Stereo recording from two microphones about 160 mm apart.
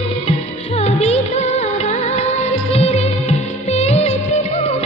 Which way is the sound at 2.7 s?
40° left (ahead or behind).